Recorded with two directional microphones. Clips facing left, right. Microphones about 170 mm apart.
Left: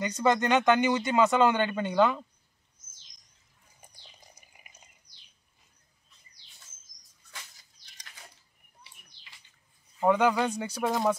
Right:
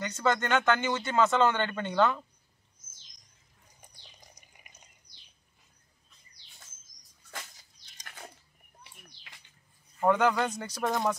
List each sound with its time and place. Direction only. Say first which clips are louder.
0.0 s speech: left 3 dB; 15° left (ahead or behind)
8.0 s a sound: right 6 dB; 55° right (ahead or behind)
9.9 s speech: left 1 dB; 10° left (ahead or behind)